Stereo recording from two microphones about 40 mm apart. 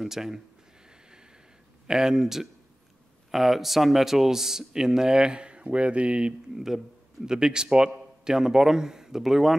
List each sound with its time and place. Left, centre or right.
0.0 s speech: centre
1.9 s speech: centre
6.5 s a man's voice: centre